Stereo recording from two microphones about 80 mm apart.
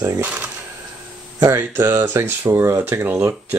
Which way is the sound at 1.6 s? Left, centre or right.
Right.